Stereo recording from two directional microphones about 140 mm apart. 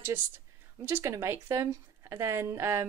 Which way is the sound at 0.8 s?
20° right (ahead or behind).